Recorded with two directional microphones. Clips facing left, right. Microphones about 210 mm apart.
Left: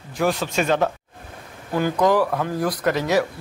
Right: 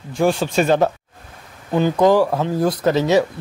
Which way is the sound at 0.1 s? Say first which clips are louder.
Right 4 dB; 30° right (ahead or behind).